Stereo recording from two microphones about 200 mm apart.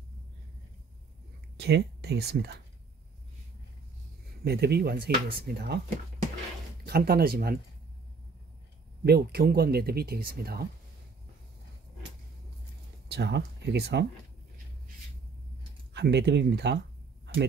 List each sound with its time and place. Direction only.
1.6 s speech: 55° right (ahead or behind)
4.5 s speech: 55° right (ahead or behind)
6.9 s speech: 50° right (ahead or behind)
9.0 s speech: 50° right (ahead or behind)
13.1 s speech: 55° right (ahead or behind)
15.9 s speech: 55° right (ahead or behind)